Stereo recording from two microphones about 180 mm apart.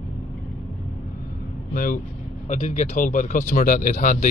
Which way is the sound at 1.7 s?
50° left (ahead or behind).